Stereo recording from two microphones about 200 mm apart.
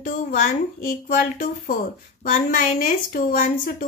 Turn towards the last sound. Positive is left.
turn(degrees=45)  # may be behind; listen again after turning